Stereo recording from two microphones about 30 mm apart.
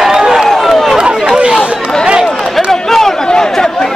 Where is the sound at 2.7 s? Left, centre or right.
Centre.